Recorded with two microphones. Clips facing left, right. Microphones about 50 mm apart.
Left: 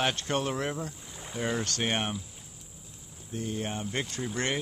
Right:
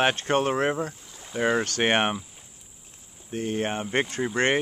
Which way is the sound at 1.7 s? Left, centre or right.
Right.